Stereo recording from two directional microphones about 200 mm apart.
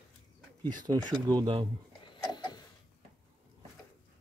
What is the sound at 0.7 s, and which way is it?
Speech, 20° right (ahead or behind).